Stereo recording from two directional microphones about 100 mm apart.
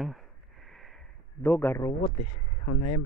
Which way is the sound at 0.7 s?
5° left (ahead or behind).